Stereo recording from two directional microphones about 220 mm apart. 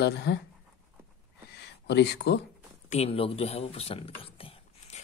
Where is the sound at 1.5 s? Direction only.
50° left (ahead or behind).